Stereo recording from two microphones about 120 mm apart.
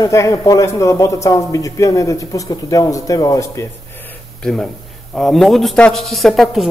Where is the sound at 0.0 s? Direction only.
25° left (ahead or behind).